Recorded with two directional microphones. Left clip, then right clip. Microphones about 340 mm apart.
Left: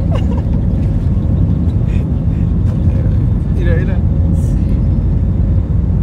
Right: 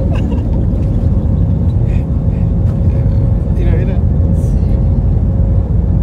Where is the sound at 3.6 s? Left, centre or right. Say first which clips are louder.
Left 1 dB; centre.